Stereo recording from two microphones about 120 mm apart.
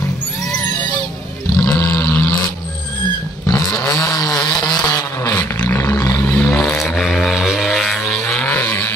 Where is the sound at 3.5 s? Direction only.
30° left (ahead or behind).